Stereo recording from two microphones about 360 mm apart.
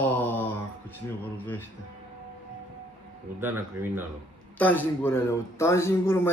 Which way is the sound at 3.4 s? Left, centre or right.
Centre.